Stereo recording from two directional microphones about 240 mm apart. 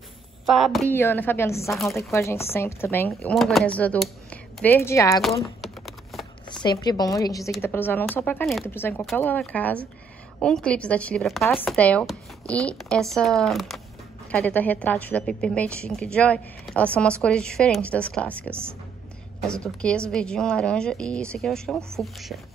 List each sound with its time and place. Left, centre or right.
0.5 s a woman's voice: centre
5.4 s typing: centre
6.4 s a woman's voice: centre